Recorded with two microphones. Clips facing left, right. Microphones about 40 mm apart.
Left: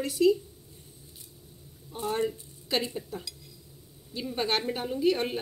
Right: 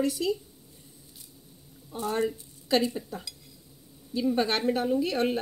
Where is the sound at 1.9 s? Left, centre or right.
Centre.